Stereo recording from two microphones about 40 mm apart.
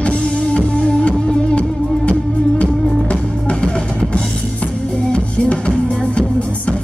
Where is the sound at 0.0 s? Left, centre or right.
Left.